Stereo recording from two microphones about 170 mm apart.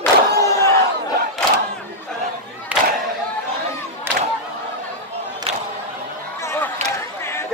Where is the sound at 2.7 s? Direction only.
10° right (ahead or behind).